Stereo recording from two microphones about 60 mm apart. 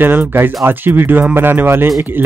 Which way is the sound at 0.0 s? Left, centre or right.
Right.